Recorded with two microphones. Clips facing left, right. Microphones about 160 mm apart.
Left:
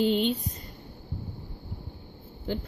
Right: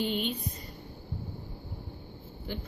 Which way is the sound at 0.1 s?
90° left.